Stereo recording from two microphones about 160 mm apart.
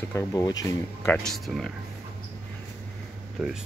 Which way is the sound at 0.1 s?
20° left (ahead or behind).